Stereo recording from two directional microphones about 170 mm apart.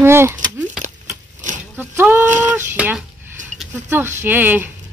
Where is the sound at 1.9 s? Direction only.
10° right (ahead or behind).